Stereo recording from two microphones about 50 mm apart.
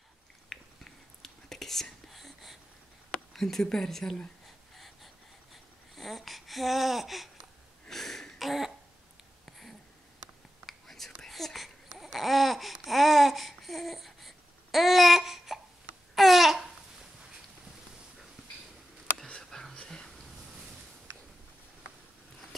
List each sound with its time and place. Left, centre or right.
0.5 s whispering: centre
3.1 s a sound: centre
3.6 s speech: centre
4.7 s wheeze: centre
7.9 s throat clearing: centre
9.5 s a sound: centre
10.6 s whispering: centre
11.2 s babbling: centre
19.7 s a sound: centre